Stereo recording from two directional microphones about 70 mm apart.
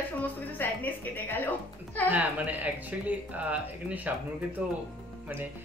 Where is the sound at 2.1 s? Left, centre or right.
Right.